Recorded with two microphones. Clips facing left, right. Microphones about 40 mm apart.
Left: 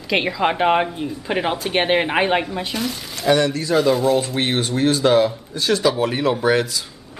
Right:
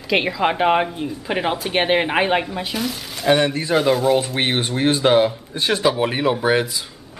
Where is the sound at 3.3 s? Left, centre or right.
Right.